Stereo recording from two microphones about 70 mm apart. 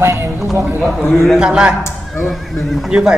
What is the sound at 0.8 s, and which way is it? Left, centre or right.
Speech, centre.